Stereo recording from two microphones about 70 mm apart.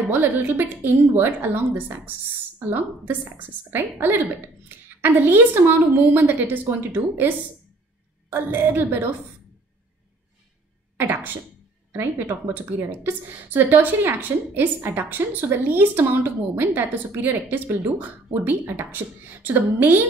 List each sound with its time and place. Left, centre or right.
0.1 s a woman's voice: right
11.0 s a woman's voice: right